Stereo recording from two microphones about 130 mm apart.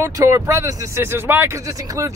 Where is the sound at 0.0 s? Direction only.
25° right (ahead or behind).